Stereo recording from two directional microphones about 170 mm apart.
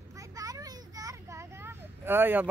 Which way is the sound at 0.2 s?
20° right (ahead or behind).